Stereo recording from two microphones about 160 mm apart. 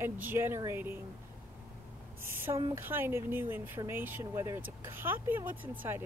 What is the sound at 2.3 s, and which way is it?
Speech, 20° right (ahead or behind).